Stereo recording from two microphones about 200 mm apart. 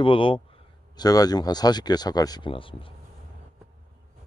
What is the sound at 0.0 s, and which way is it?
Speech, 25° left (ahead or behind).